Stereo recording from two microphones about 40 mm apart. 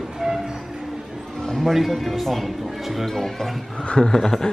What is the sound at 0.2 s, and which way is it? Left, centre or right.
Train, centre.